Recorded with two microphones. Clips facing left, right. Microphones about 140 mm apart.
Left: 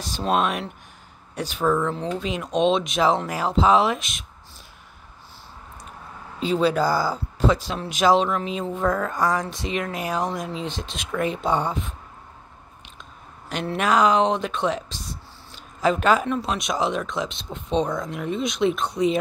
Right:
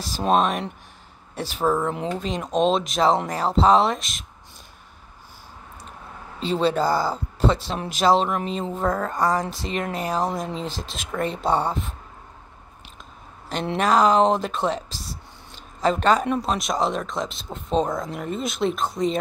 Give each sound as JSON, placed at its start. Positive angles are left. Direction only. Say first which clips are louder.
{"t": 0.3, "sound": "speech", "louder": "right 2 dB", "side_deg": 0}
{"t": 1.8, "sound": "speech", "louder": "even", "side_deg": -15}
{"t": 2.1, "sound": "speech", "louder": "right 1 dB", "side_deg": 0}
{"t": 6.4, "sound": "speech", "louder": "left 1 dB", "side_deg": 0}
{"t": 6.9, "sound": "speech", "louder": "even", "side_deg": -25}
{"t": 7.3, "sound": "speech", "louder": "left 1 dB", "side_deg": 0}
{"t": 13.7, "sound": "speech", "louder": "right 1 dB", "side_deg": 0}
{"t": 15.5, "sound": "a sound", "louder": "even", "side_deg": 0}
{"t": 16.3, "sound": "speech", "louder": "right 1 dB", "side_deg": 0}